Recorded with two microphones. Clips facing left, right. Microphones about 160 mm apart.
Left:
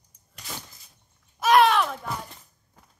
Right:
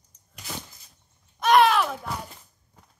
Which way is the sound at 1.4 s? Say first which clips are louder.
Even; centre (ahead or behind).